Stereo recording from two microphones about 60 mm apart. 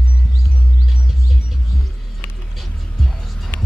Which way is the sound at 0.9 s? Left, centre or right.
Centre.